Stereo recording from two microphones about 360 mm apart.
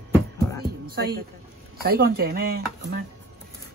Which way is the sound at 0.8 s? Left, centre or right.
Right.